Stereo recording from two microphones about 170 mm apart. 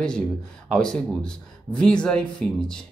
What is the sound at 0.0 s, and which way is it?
Speech, 5° left (ahead or behind).